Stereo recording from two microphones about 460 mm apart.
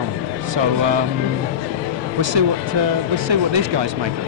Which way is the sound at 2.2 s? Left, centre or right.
Right.